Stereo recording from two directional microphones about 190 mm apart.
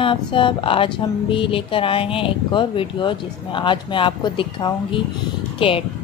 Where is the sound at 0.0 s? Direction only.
25° left (ahead or behind).